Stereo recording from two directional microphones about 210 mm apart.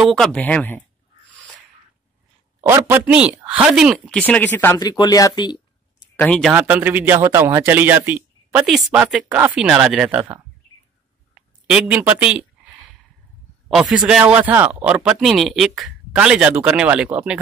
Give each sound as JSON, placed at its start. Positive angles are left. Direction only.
{"t": 0.0, "sound": "speech", "side_deg": 0}
{"t": 1.3, "sound": "a sound", "side_deg": 5}
{"t": 2.7, "sound": "speech", "side_deg": -10}
{"t": 4.3, "sound": "speech", "side_deg": 10}
{"t": 4.7, "sound": "speech", "side_deg": 20}
{"t": 6.1, "sound": "speech", "side_deg": 5}
{"t": 6.5, "sound": "a man's voice", "side_deg": -10}
{"t": 13.7, "sound": "a man's voice", "side_deg": 0}